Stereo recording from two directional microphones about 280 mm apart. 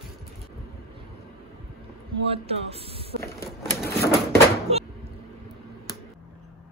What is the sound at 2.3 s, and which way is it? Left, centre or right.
Speech, right.